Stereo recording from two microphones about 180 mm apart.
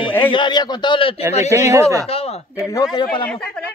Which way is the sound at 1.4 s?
15° right (ahead or behind).